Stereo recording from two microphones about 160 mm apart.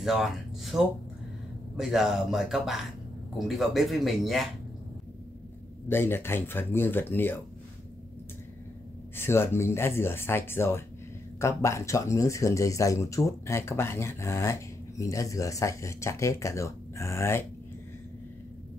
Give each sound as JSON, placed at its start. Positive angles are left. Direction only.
{"t": 0.0, "sound": "speech", "side_deg": 0}
{"t": 5.9, "sound": "speech", "side_deg": 15}
{"t": 9.1, "sound": "speech", "side_deg": 15}